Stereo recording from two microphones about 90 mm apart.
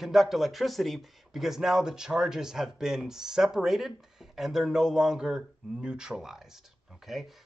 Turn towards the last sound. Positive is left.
turn(degrees=0)  # may be behind; listen again after turning